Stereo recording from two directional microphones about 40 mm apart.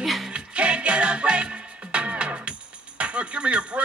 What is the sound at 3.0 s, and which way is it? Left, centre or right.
Speech, right.